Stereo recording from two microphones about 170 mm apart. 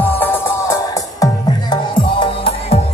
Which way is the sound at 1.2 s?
25° left (ahead or behind).